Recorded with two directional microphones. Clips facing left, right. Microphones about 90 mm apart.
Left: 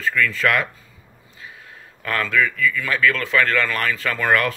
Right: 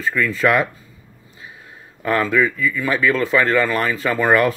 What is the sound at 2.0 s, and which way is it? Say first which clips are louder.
Speech: right 4 dB; 20° right (ahead or behind).